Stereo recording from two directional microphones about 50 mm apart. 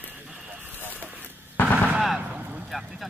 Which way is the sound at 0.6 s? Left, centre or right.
Right.